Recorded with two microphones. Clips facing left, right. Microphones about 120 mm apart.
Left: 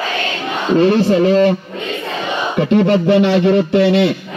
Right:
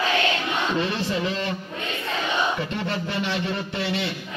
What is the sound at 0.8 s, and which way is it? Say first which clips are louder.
Speech: left 14 dB; 75° left (ahead or behind).